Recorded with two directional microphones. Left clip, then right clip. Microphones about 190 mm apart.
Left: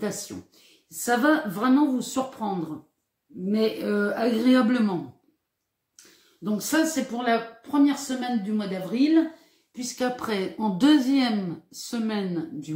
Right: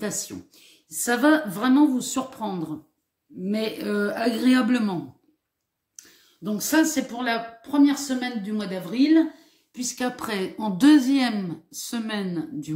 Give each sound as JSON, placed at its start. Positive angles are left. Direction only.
{"t": 0.0, "sound": "a woman's voice", "side_deg": -35}
{"t": 6.4, "sound": "a woman's voice", "side_deg": -35}